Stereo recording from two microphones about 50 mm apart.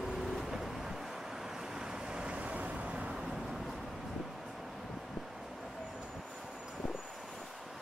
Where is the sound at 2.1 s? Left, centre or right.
Right.